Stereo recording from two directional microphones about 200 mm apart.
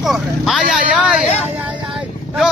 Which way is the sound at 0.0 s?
Centre (ahead or behind).